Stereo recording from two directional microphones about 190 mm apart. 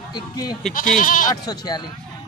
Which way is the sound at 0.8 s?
45° left (ahead or behind).